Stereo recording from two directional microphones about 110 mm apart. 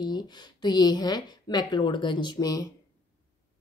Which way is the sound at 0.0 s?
40° left (ahead or behind).